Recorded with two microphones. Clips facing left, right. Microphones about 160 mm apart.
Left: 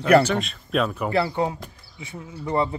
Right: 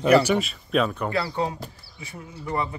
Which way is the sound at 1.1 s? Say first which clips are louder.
Left 3 dB; 20° left (ahead or behind).